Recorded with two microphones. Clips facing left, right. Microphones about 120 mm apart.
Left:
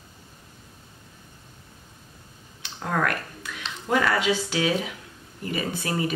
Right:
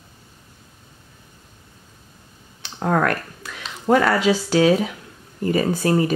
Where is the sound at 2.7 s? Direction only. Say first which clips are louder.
Right 6 dB; 45° right (ahead or behind).